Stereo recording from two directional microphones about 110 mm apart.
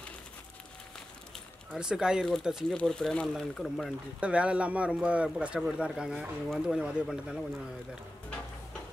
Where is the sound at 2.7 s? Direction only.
10° left (ahead or behind).